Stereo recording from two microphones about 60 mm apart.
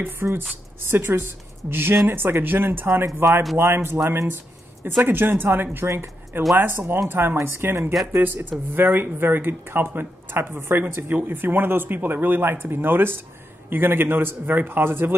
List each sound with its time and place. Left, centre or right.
0.0 s speech: right